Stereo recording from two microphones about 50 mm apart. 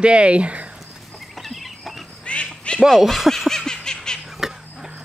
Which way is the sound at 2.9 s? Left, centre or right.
Centre.